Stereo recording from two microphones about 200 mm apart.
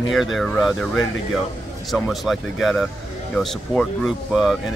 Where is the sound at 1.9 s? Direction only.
Centre (ahead or behind).